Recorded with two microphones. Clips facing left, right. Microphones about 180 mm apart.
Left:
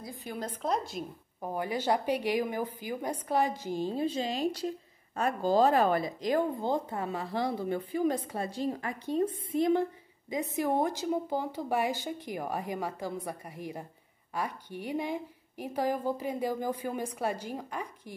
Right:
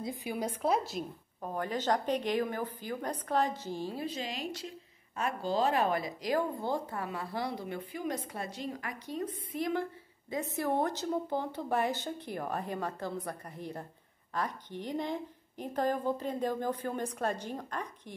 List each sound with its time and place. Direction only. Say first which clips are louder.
0.0 s speech: right 3 dB; 15° right (ahead or behind)
1.4 s a woman's voice: left 2 dB; 10° left (ahead or behind)
10.3 s a woman's voice: left 2 dB; 15° left (ahead or behind)